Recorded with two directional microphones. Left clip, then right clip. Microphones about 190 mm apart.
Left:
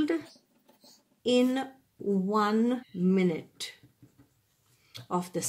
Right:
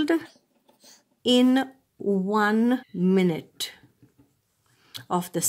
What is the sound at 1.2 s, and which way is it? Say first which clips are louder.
Speech: right 5 dB; 40° right (ahead or behind).